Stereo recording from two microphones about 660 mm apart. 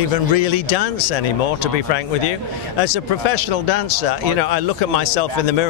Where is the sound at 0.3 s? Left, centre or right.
Left.